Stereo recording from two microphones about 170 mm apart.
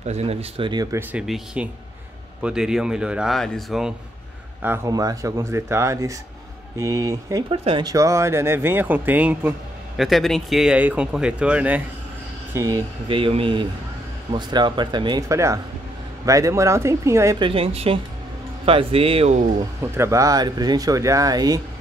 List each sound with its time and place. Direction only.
0.0 s speech: 40° right (ahead or behind)
0.9 s speech: 5° right (ahead or behind)
4.6 s speech: 15° right (ahead or behind)
12.5 s speech: 20° right (ahead or behind)
17.4 s speech: 35° right (ahead or behind)
19.8 s speech: 15° right (ahead or behind)